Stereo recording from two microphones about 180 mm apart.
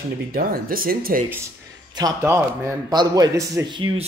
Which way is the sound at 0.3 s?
55° right (ahead or behind).